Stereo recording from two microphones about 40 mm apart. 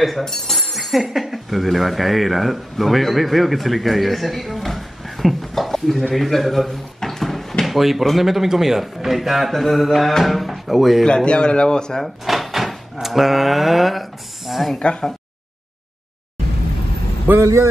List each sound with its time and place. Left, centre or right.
0.2 s speech: centre
11.1 s speech: left
12.0 s cupboard open or close: centre
14.8 s speech: left